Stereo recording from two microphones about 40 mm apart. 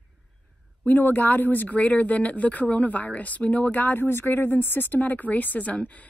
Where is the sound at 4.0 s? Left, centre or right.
Left.